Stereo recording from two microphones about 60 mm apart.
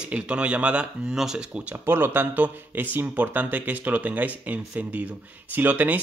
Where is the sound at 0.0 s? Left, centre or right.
Centre.